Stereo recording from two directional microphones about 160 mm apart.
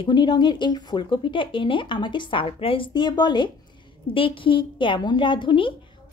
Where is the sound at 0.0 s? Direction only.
30° left (ahead or behind).